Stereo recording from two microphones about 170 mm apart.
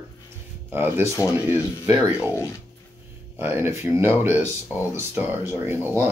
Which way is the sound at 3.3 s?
10° right (ahead or behind).